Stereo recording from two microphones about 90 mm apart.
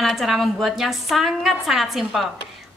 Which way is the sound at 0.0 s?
Centre (ahead or behind).